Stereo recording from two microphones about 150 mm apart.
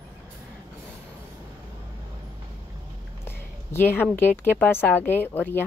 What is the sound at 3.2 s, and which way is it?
A woman's voice, 15° left (ahead or behind).